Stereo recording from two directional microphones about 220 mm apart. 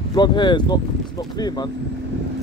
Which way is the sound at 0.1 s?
20° left (ahead or behind).